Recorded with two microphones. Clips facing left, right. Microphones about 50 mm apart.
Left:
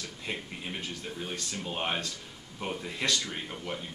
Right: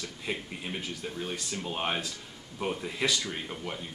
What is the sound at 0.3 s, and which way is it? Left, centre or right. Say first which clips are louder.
Speech: right 2 dB; centre.